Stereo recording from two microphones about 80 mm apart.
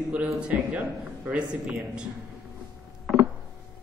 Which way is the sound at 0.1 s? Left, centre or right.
Centre.